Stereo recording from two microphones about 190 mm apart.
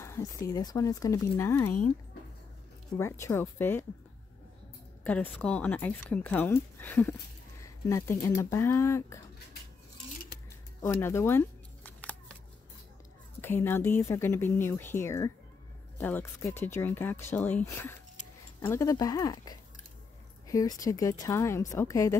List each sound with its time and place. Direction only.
0.0 s speech: 15° left (ahead or behind)
3.0 s speech: 15° left (ahead or behind)
5.0 s speech: 5° left (ahead or behind)
10.8 s camera: 10° left (ahead or behind)
13.4 s speech: 10° left (ahead or behind)